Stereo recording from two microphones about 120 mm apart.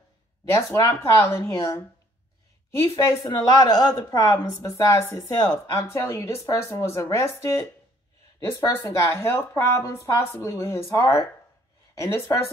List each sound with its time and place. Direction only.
1.1 s speech: 20° left (ahead or behind)